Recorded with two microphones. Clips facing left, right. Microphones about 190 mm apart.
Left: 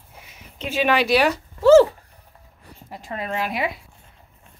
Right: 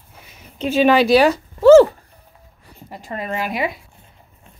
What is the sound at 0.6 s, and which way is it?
Speech, 35° right (ahead or behind).